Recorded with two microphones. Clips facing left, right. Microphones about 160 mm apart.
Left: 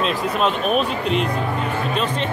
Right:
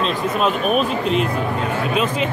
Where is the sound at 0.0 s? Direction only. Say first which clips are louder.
Right 1 dB; centre (ahead or behind).